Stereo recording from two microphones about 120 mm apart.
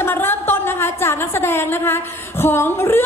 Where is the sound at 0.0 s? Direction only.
20° left (ahead or behind).